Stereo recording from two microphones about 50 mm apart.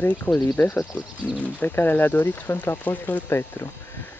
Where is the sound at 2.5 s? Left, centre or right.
Left.